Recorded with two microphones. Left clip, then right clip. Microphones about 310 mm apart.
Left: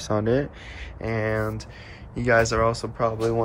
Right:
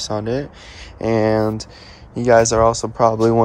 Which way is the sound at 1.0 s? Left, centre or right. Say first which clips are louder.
Right 9 dB; centre.